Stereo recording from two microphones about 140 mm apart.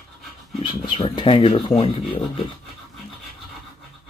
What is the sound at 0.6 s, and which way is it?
Speech, 35° left (ahead or behind).